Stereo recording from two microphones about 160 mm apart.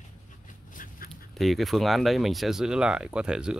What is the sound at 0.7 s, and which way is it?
Dog, 60° left (ahead or behind).